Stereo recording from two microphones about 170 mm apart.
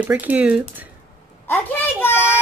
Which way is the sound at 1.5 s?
10° left (ahead or behind).